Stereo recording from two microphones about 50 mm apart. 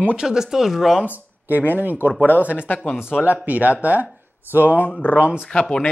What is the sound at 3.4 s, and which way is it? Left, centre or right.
Speech, right.